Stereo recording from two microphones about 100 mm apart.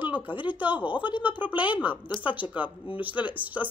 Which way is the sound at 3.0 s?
15° right (ahead or behind).